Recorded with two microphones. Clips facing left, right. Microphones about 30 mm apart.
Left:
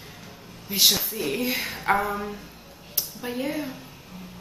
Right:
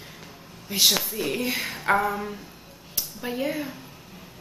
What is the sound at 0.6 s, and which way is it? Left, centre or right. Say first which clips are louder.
Speech: even; centre.